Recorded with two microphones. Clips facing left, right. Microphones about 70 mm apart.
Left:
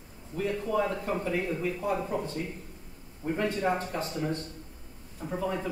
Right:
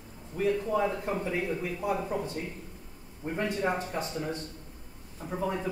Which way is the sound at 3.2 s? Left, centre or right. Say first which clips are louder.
Left 3 dB; right.